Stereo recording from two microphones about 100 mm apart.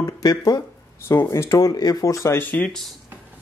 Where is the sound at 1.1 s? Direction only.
25° left (ahead or behind).